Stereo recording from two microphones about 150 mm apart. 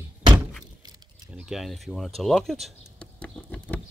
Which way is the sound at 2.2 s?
Centre (ahead or behind).